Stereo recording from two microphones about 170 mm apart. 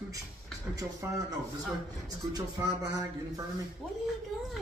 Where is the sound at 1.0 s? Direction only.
15° right (ahead or behind).